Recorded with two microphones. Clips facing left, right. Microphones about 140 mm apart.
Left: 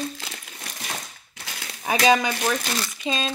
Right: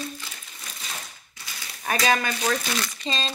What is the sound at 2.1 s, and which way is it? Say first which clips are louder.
Speech: left 5 dB; 15° left (ahead or behind).